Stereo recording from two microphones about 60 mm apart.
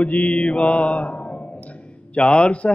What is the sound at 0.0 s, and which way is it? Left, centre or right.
Speech, left.